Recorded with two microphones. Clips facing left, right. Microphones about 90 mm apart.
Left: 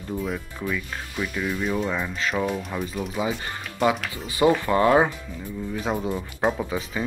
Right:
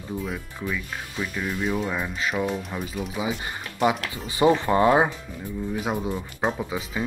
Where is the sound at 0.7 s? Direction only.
5° right (ahead or behind).